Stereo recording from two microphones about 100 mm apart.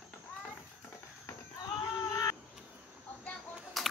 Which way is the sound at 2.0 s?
30° left (ahead or behind).